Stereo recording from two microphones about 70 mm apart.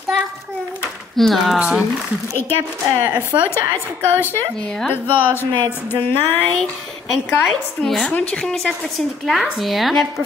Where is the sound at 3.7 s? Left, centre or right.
Left.